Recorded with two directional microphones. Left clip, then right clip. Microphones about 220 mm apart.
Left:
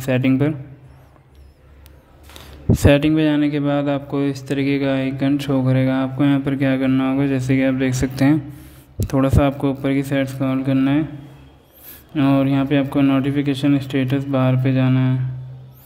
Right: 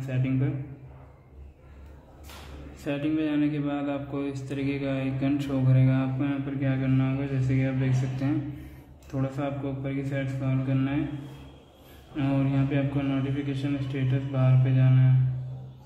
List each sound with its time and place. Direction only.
0.0 s a man's voice: 50° left (ahead or behind)
2.8 s a man's voice: 45° left (ahead or behind)
12.2 s a man's voice: 50° left (ahead or behind)